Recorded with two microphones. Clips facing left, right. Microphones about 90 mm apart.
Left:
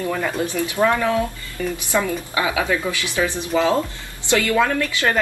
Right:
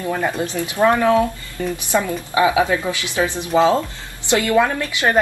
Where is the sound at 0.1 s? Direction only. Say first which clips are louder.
Right 1 dB; 25° right (ahead or behind).